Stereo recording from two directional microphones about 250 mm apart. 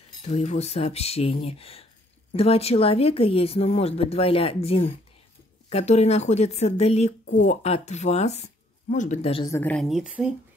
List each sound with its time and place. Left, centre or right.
0.2 s speech: left; by 10.3 s centre